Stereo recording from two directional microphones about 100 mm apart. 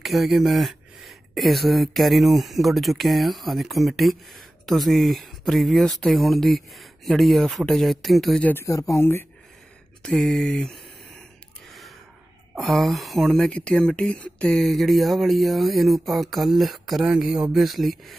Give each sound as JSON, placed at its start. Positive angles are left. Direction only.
{"t": 0.0, "sound": "speech", "side_deg": 0}
{"t": 8.4, "sound": "speech", "side_deg": 15}
{"t": 8.6, "sound": "speech", "side_deg": 35}
{"t": 10.0, "sound": "speech", "side_deg": 5}
{"t": 12.5, "sound": "speech", "side_deg": 0}
{"t": 14.6, "sound": "speech", "side_deg": 0}